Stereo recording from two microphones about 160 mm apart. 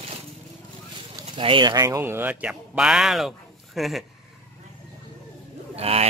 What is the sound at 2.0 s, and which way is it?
Speech, 15° right (ahead or behind).